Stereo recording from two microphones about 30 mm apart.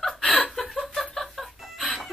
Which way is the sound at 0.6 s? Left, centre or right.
Centre.